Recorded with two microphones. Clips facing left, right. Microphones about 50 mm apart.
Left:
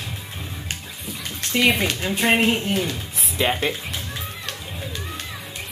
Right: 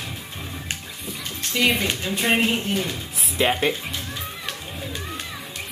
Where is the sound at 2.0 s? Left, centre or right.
Centre.